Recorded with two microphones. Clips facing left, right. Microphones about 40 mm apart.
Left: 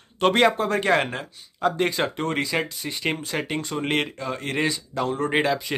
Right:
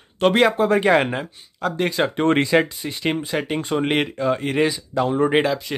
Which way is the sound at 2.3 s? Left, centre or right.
Right.